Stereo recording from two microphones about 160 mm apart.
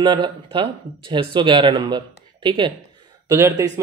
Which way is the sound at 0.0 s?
25° right (ahead or behind).